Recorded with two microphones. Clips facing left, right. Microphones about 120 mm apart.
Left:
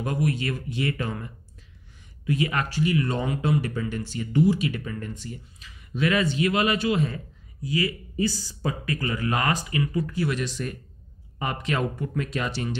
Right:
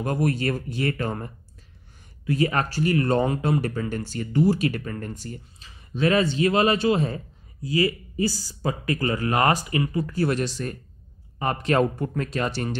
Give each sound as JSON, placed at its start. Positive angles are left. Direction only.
{"t": 0.0, "sound": "speech", "side_deg": -45}
{"t": 2.3, "sound": "speech", "side_deg": -40}